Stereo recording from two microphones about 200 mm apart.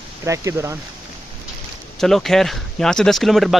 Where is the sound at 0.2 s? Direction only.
15° right (ahead or behind).